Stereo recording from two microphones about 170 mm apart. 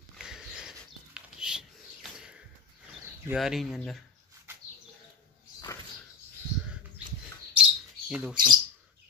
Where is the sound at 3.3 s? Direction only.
Centre (ahead or behind).